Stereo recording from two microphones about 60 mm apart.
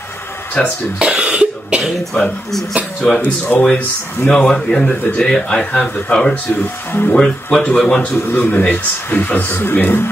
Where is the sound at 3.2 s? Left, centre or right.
Left.